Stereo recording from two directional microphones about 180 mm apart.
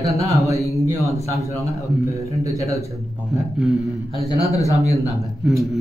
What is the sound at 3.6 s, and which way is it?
Speech, centre (ahead or behind).